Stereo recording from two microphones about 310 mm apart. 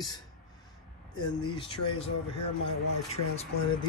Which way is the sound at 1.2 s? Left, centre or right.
Centre.